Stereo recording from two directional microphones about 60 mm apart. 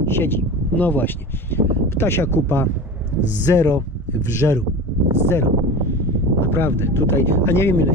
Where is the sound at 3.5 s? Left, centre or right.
Left.